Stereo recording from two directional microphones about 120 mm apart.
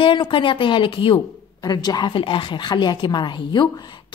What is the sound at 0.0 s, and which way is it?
A woman's voice, 45° left (ahead or behind).